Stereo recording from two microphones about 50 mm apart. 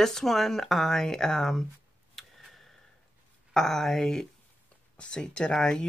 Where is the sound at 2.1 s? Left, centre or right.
Centre.